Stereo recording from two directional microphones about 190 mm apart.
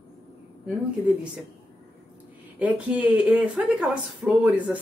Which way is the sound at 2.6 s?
5° right (ahead or behind).